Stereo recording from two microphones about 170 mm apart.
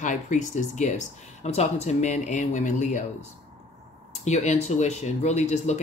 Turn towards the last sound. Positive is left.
turn(degrees=40)  # may be behind; listen again after turning